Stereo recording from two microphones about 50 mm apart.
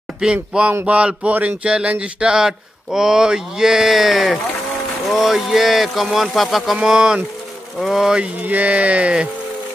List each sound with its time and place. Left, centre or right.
0.2 s speech: centre
6.8 s speech: centre
8.2 s speech: right